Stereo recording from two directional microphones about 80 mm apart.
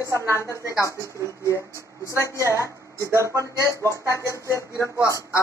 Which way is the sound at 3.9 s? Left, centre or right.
Left.